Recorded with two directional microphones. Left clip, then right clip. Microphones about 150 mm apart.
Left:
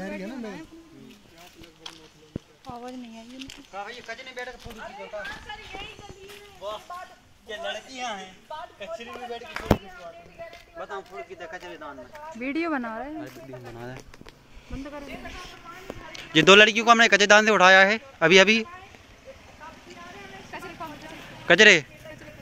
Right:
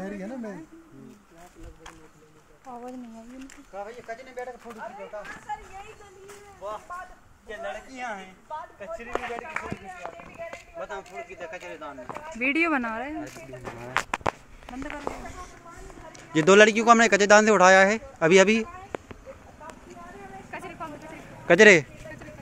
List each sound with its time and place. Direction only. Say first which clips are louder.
3.3 s speech: left 1 dB; 30° left (ahead or behind)
7.4 s a man's voice: left 2 dB; 5° right (ahead or behind)
10.8 s a man's voice: left 1 dB; centre (ahead or behind)
16.1 s a man's voice: left 4 dB; 5° right (ahead or behind)
20.5 s vehicle: even; 5° right (ahead or behind)
21.5 s speech: even; 10° right (ahead or behind)